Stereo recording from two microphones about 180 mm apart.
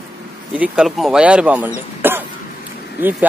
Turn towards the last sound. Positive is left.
turn(degrees=-10)  # may be behind; listen again after turning